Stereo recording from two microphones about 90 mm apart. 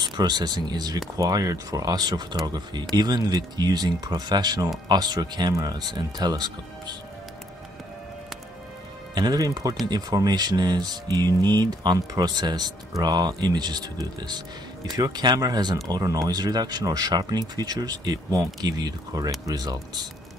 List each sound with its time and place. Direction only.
0.0 s speech: 50° right (ahead or behind)
9.1 s speech: 45° right (ahead or behind)